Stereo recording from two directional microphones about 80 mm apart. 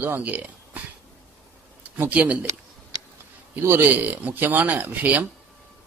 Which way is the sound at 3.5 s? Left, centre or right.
Right.